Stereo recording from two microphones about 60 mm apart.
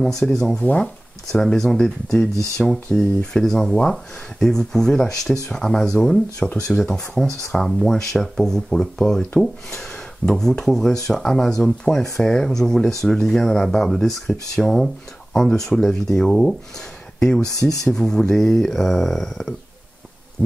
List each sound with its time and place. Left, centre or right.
0.2 s speech: centre
0.6 s speech: centre